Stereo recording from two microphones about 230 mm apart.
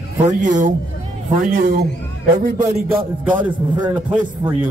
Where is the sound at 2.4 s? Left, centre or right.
Right.